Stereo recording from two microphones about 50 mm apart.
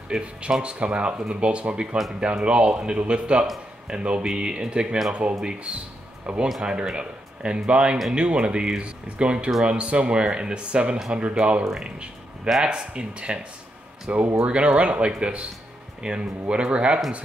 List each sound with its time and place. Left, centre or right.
0.1 s speech: centre
0.5 s speech: right